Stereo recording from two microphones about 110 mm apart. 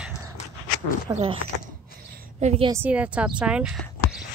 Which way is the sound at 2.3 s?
70° right (ahead or behind).